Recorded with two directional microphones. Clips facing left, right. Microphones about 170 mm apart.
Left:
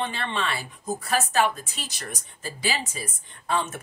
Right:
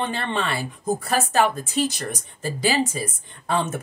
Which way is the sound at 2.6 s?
45° right (ahead or behind).